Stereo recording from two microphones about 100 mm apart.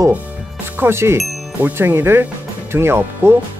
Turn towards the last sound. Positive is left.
turn(degrees=-25)  # may be behind; listen again after turning